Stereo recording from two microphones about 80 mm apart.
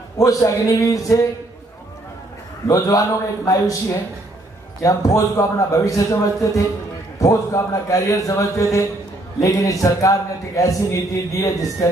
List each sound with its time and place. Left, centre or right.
0.2 s a man's voice: left
2.7 s a man's voice: left